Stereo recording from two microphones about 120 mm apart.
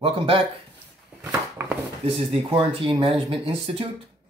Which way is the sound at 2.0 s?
50° right (ahead or behind).